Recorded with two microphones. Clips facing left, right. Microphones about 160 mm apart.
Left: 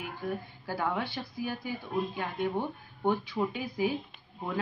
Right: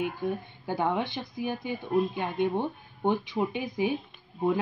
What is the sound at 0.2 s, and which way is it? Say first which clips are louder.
Speech: right 4 dB; 20° right (ahead or behind).